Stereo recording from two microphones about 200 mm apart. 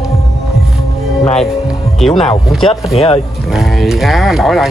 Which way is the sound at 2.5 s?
Centre (ahead or behind).